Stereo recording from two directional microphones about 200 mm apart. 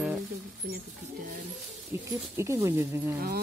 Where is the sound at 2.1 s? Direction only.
15° right (ahead or behind).